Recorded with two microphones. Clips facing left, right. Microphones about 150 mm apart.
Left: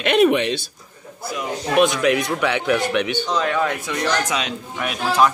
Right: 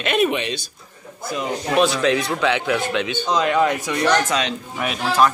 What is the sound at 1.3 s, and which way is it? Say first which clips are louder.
A man's voice: even; 30° right (ahead or behind).